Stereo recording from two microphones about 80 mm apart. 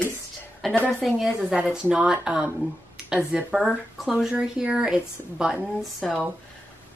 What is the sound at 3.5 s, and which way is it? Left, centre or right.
Speech, centre.